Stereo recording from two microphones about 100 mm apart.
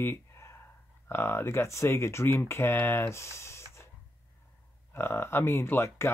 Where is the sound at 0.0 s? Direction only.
25° left (ahead or behind).